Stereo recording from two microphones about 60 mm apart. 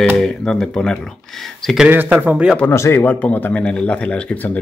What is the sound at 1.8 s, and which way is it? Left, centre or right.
Speech, right.